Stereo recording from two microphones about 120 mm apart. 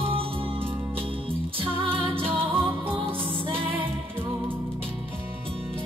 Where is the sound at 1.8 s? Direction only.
45° right (ahead or behind).